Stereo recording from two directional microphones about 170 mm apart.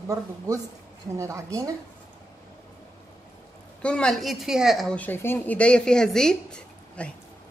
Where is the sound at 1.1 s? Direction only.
20° right (ahead or behind).